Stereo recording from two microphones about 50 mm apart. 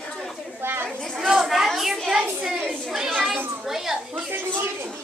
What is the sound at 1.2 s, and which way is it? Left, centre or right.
A woman's voice, centre.